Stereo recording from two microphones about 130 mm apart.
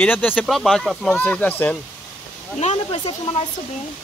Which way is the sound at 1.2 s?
15° left (ahead or behind).